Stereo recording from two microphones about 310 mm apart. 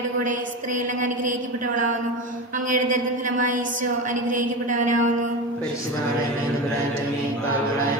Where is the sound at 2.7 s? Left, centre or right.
Right.